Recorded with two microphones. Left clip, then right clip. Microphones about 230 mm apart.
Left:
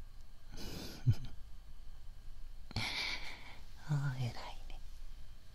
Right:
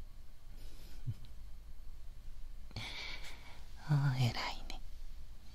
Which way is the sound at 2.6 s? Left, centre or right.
Left.